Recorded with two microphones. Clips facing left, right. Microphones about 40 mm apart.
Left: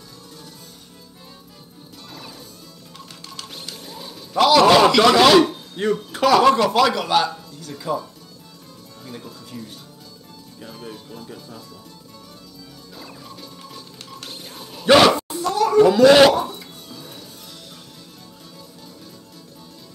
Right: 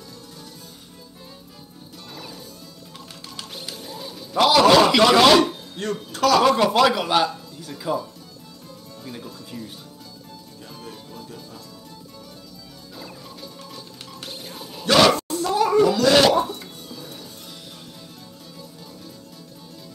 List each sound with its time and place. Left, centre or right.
2.1 s music: centre
3.5 s music: centre
5.0 s speech: centre
5.8 s speech: centre
6.5 s speech: centre
10.6 s speech: centre
12.9 s music: centre
14.9 s a sound: centre
15.4 s speech: centre
15.8 s speech: centre
16.3 s cough: centre